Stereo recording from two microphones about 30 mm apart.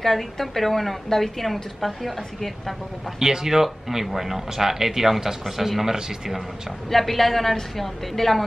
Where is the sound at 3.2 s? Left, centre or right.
Centre.